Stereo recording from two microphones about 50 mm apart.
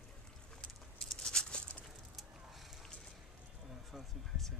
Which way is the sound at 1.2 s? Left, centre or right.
Centre.